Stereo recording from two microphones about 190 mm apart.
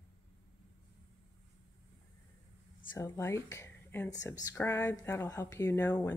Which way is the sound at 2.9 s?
15° left (ahead or behind).